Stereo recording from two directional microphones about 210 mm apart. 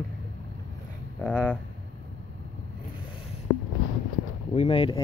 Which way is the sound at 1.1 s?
5° left (ahead or behind).